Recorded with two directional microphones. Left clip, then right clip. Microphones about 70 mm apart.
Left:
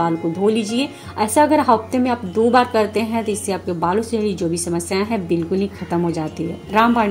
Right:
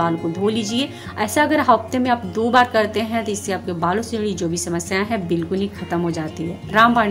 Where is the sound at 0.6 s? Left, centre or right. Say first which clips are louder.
Left 1 dB; left.